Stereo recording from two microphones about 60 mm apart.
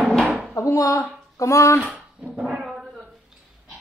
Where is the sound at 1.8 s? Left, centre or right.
Centre.